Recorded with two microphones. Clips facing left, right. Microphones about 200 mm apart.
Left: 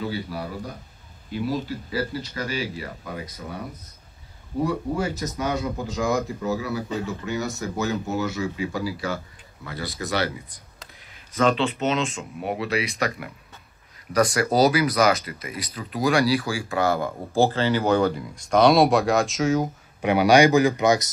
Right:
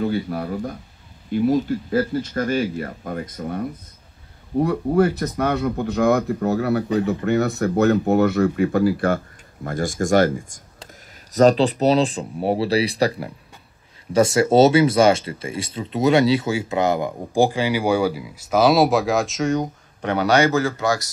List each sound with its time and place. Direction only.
0.0 s speech: 50° right (ahead or behind); by 21.1 s 20° left (ahead or behind)